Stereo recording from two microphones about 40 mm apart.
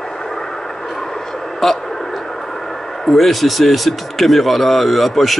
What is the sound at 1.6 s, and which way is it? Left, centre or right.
Radio, centre.